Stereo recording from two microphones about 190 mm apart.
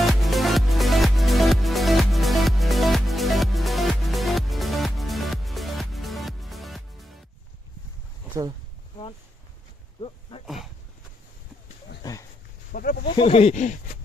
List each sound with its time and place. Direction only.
0.0 s music: centre (ahead or behind)
9.9 s wild animals: 30° left (ahead or behind)
10.4 s dog: centre (ahead or behind)
12.0 s a sound: 15° left (ahead or behind)
12.7 s a sound: 50° left (ahead or behind)
13.1 s speech: 30° left (ahead or behind)